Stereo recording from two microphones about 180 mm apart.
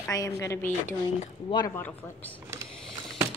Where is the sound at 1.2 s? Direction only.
25° left (ahead or behind).